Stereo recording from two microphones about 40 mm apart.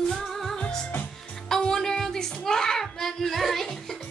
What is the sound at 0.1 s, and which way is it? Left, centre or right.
Music, centre.